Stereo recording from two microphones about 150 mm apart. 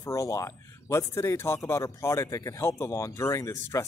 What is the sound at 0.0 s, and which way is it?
Speech, 20° left (ahead or behind).